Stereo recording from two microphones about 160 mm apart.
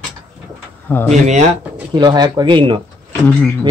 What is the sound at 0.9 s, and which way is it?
Speech, 15° left (ahead or behind).